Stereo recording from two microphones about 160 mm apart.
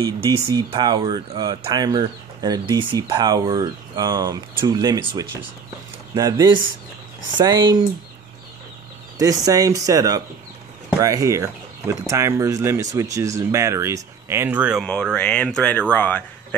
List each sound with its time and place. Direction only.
0.0 s speech: 25° right (ahead or behind)
9.2 s speech: 20° right (ahead or behind)
14.9 s speech: 5° left (ahead or behind)